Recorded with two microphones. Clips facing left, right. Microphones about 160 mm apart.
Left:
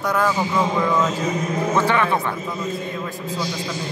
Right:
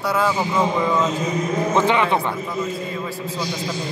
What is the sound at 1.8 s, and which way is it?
Speech, 20° right (ahead or behind).